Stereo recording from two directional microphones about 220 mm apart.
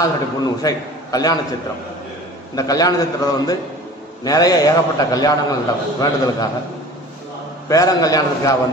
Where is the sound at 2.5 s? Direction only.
15° left (ahead or behind).